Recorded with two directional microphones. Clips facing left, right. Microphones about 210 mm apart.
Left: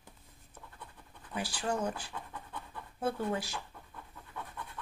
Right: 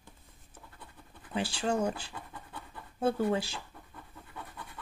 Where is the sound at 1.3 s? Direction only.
25° right (ahead or behind).